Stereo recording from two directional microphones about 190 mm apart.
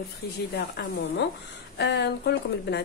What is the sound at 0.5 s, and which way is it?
A woman's voice, 55° left (ahead or behind).